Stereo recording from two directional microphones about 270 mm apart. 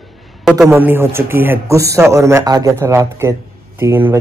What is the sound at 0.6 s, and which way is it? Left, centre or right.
Speech, centre.